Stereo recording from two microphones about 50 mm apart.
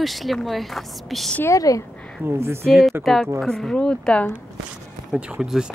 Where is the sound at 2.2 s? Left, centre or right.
Right.